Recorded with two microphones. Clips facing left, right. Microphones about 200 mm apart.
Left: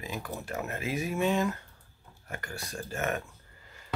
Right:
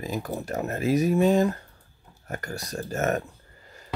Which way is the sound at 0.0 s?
40° right (ahead or behind).